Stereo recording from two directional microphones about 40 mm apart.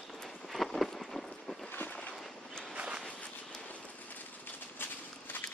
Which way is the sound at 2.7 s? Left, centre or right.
Right.